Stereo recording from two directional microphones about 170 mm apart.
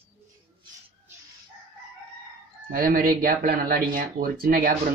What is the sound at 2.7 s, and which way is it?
Speech, 55° right (ahead or behind).